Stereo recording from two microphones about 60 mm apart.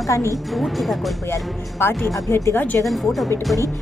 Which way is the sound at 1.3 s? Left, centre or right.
Left.